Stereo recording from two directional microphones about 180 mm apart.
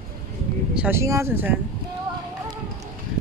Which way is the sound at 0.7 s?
10° right (ahead or behind).